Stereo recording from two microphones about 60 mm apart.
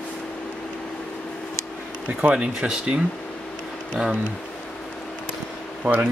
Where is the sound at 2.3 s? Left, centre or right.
Centre.